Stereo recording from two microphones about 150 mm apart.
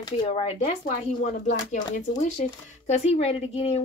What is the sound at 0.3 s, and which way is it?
Speech, 45° left (ahead or behind).